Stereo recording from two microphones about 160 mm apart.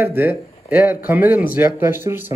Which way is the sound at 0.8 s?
10° right (ahead or behind).